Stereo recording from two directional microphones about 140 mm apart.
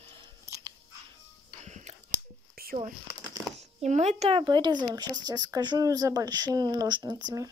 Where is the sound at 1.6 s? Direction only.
55° right (ahead or behind).